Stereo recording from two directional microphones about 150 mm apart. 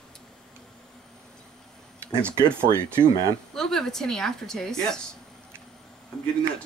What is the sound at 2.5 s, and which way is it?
Speech, 15° right (ahead or behind).